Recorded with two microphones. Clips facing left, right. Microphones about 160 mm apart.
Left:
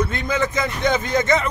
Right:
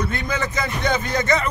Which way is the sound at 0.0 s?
20° left (ahead or behind).